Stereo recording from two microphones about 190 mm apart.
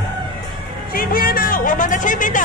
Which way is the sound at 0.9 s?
50° left (ahead or behind).